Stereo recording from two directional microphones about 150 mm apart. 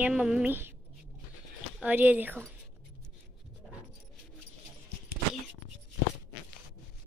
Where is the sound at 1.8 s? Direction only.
10° right (ahead or behind).